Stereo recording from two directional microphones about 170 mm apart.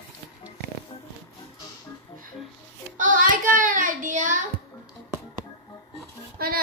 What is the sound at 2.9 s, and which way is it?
Child singing, 50° right (ahead or behind).